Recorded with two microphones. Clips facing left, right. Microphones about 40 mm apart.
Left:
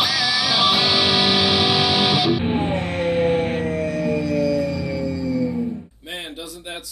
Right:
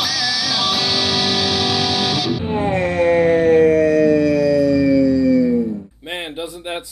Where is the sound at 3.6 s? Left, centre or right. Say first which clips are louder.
Right 10 dB; right.